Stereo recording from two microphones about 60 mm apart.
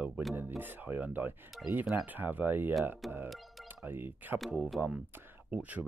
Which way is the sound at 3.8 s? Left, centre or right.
Right.